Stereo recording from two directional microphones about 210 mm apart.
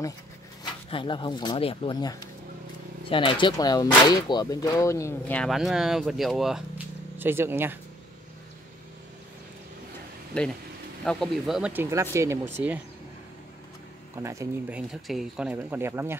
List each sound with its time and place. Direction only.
0.8 s speech: 25° left (ahead or behind); by 7.8 s 10° right (ahead or behind)
10.3 s speech: 5° left (ahead or behind)
14.1 s speech: 15° right (ahead or behind)